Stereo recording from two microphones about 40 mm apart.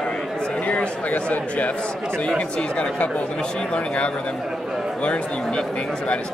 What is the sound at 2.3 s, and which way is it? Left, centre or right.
Speech, left.